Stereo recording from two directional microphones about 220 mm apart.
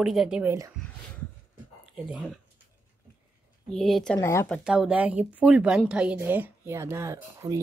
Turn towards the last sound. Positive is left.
turn(degrees=-15)  # may be behind; listen again after turning